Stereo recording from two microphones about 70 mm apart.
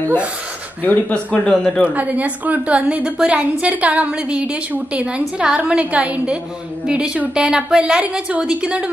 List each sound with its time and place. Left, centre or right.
0.8 s speech: left
1.9 s a woman's voice: right